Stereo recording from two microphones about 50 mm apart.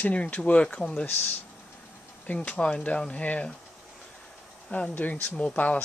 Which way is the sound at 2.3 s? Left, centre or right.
Left.